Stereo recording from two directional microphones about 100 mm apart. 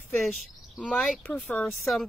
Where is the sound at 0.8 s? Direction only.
10° left (ahead or behind).